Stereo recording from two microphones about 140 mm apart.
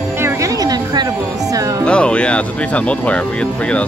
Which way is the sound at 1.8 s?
5° left (ahead or behind).